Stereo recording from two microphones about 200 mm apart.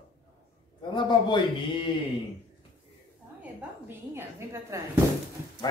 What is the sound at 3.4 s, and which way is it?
A woman's voice, 10° right (ahead or behind).